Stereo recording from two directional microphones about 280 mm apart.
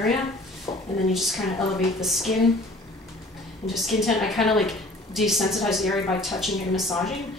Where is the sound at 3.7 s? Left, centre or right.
Centre.